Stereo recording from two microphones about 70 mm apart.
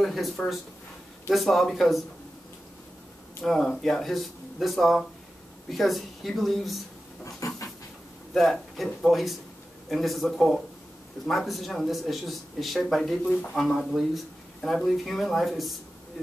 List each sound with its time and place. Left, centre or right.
0.0 s speech: centre
3.4 s speech: centre
7.2 s pant: left
8.3 s speech: centre
13.2 s speech: centre
13.6 s speech: centre